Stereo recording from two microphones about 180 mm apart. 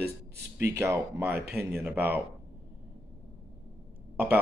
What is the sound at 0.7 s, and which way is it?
Speech, 15° right (ahead or behind).